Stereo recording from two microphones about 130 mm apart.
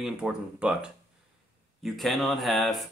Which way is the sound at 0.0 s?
5° right (ahead or behind).